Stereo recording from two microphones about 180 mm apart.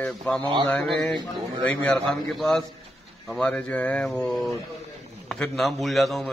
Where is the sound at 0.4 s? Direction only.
25° right (ahead or behind).